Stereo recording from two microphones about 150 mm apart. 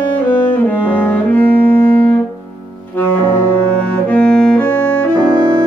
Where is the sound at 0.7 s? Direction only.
10° left (ahead or behind).